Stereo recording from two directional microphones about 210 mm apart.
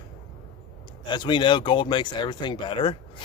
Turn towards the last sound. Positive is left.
turn(degrees=25)  # may be behind; listen again after turning